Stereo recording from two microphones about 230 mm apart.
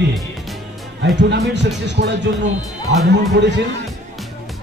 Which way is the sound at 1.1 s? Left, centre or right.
Right.